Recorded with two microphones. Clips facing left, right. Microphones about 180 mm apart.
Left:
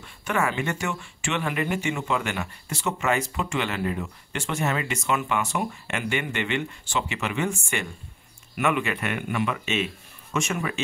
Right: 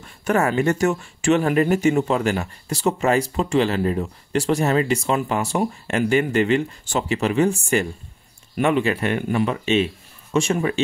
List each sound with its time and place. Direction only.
0.0 s speech: 40° right (ahead or behind)